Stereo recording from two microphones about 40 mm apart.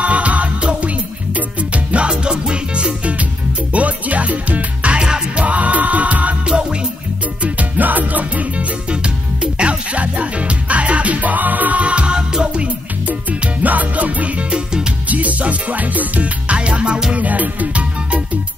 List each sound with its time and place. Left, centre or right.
0.0 s music: right
5.0 s music: right
5.4 s music: right
6.4 s music: right
7.4 s music: right
8.9 s music: right
12.6 s music: right
14.5 s music: centre
15.0 s music: right
16.5 s music: right
17.1 s music: right